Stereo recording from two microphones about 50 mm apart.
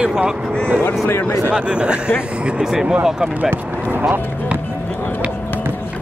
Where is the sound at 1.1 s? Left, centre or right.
Left.